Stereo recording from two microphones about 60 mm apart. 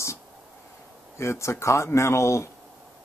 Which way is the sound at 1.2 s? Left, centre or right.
Left.